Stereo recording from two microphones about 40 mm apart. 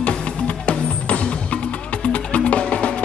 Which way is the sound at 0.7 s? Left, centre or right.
Left.